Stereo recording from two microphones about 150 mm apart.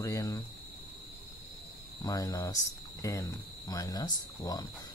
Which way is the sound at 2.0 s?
25° left (ahead or behind).